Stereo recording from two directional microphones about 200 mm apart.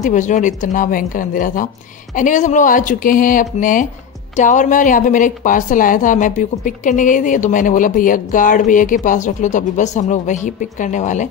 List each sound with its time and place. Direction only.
0.0 s a woman's voice: 40° left (ahead or behind)